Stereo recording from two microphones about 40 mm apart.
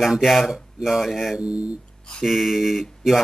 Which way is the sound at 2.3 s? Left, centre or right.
Centre.